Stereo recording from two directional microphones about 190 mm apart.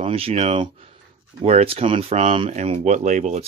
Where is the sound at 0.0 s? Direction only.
30° right (ahead or behind).